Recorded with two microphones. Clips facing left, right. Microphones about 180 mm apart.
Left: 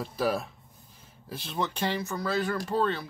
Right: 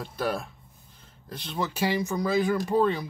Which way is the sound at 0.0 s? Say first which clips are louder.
Left 1 dB; centre (ahead or behind).